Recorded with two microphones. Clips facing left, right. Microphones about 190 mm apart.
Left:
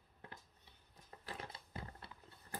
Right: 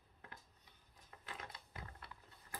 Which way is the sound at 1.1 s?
35° left (ahead or behind).